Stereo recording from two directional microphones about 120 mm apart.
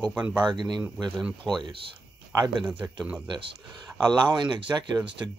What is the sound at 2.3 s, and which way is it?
Speech, 35° right (ahead or behind).